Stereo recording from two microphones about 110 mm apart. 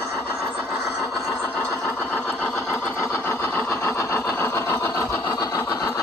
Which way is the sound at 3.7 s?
25° left (ahead or behind).